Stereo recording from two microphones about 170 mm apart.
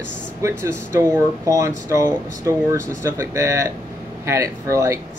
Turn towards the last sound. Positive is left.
turn(degrees=-15)  # may be behind; listen again after turning